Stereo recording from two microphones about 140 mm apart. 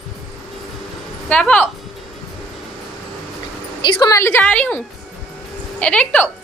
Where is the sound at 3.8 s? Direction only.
30° left (ahead or behind).